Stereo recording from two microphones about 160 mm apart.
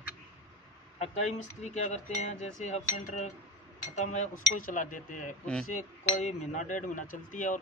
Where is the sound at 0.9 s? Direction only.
45° left (ahead or behind).